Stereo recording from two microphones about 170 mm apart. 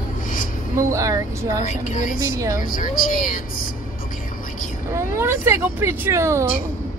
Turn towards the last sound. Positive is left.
turn(degrees=-15)  # may be behind; listen again after turning